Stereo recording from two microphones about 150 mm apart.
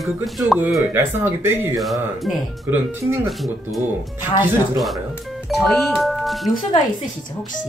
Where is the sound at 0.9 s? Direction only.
20° right (ahead or behind).